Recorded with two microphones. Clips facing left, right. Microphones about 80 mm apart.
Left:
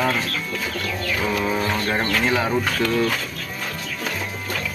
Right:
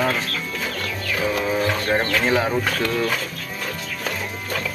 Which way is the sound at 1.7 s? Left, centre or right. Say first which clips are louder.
Right 1 dB; centre.